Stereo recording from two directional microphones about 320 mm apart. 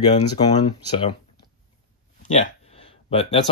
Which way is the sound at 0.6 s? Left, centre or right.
Centre.